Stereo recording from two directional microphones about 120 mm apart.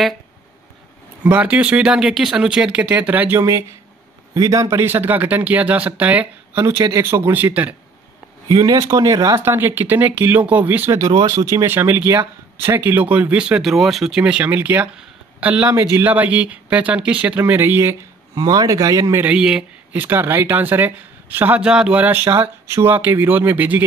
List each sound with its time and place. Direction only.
1.2 s speech: 15° right (ahead or behind)
6.6 s speech: 25° right (ahead or behind)
8.5 s speech: 30° right (ahead or behind); by 10.9 s 15° right (ahead or behind)
10.9 s speech: 25° right (ahead or behind)
15.7 s speech: 25° right (ahead or behind)
18.3 s speech: 30° right (ahead or behind)
19.2 s speech: 5° right (ahead or behind)